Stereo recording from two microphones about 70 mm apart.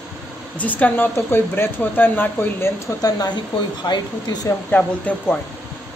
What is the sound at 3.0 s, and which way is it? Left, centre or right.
Speech, left.